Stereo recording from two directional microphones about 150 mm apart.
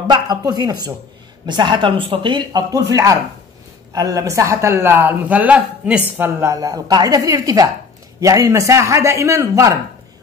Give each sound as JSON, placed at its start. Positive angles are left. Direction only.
{"t": 0.0, "sound": "speech", "side_deg": -30}